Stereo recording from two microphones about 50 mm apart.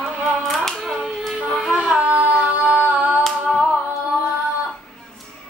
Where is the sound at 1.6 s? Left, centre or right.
Centre.